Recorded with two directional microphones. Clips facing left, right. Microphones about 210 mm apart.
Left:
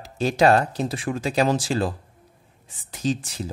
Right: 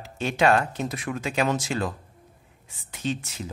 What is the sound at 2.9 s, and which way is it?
Speech, 35° left (ahead or behind).